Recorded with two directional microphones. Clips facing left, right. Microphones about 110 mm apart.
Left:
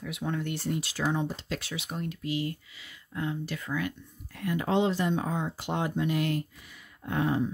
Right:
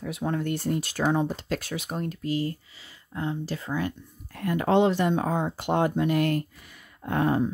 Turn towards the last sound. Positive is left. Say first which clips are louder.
# right 4 dB
turn(degrees=-50)  # may be behind; listen again after turning